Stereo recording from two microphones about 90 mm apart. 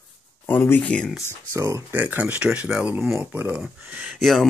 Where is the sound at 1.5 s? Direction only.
35° right (ahead or behind).